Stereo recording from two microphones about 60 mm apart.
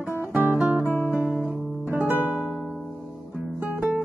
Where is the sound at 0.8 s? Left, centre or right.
Left.